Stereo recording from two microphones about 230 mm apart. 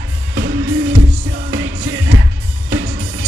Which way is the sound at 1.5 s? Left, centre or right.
Right.